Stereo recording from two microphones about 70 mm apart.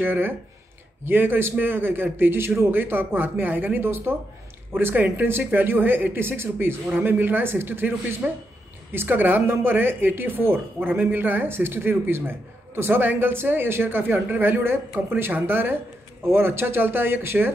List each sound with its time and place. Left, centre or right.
0.0 s speech: right
8.2 s speech: centre
8.9 s speech: right